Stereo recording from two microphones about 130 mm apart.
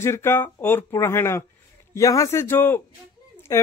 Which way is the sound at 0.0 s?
20° left (ahead or behind).